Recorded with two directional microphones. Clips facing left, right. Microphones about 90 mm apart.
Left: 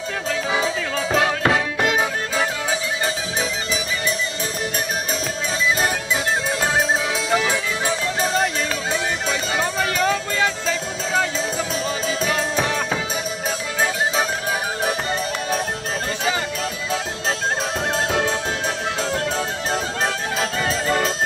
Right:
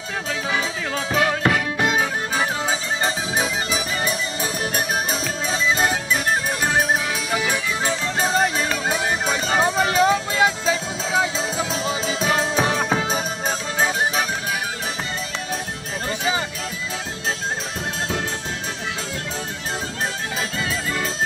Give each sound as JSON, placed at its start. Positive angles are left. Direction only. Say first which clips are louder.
{"t": 3.3, "sound": "music", "louder": "right 1 dB", "side_deg": -45}
{"t": 8.2, "sound": "music", "louder": "right 2 dB", "side_deg": 0}
{"t": 10.0, "sound": "music", "louder": "right 2 dB", "side_deg": -10}
{"t": 12.3, "sound": "music", "louder": "right 4 dB", "side_deg": -10}